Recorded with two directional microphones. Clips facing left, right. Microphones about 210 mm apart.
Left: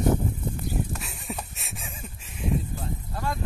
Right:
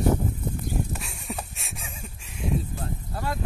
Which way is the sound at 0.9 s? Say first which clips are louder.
Even; centre (ahead or behind).